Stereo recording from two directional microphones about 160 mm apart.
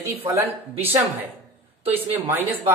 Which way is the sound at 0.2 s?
20° right (ahead or behind).